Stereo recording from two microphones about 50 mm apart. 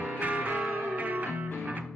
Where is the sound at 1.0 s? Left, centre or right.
Right.